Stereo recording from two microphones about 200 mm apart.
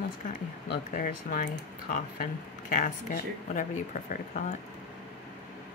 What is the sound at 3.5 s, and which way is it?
Speech, 40° left (ahead or behind).